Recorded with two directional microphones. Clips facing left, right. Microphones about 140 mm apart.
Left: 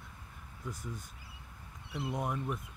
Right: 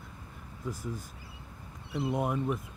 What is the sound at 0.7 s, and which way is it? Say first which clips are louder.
Speech: right 6 dB; 5° right (ahead or behind).